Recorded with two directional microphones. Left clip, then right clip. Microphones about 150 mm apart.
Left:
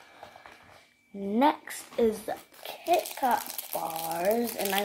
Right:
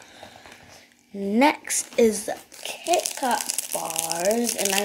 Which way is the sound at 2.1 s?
5° right (ahead or behind).